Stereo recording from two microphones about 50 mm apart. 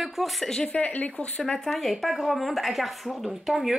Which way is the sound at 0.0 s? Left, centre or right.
Centre.